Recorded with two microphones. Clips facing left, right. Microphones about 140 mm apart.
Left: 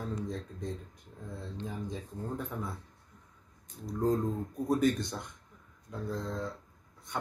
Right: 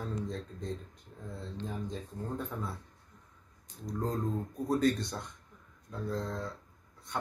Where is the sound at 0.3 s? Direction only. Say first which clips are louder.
Even; 15° left (ahead or behind).